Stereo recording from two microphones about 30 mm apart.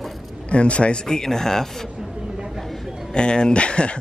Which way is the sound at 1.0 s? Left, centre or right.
Centre.